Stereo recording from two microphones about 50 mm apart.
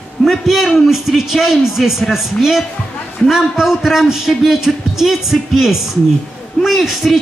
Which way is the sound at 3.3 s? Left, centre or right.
Centre.